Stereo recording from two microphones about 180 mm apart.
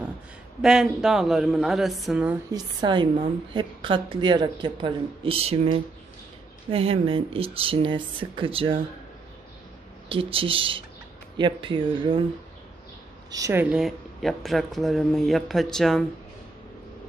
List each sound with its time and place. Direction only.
0.6 s speech: 5° right (ahead or behind)
2.5 s a woman's voice: 25° right (ahead or behind)
10.0 s a woman's voice: 30° right (ahead or behind)
13.3 s speech: 15° right (ahead or behind); by 16.1 s centre (ahead or behind)